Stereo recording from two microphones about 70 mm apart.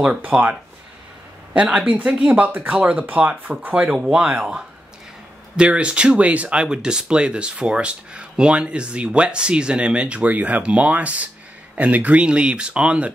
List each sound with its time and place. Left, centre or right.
0.3 s speech: centre
1.5 s speech: centre